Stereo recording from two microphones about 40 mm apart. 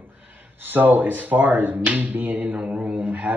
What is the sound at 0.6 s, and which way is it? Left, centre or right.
Speech, right.